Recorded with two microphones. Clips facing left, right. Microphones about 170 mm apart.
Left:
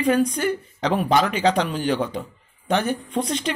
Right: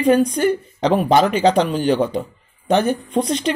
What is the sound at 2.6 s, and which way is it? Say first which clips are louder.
Speech: right 5 dB; 40° right (ahead or behind).